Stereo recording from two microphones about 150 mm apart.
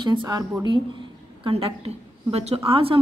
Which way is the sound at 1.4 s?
40° right (ahead or behind).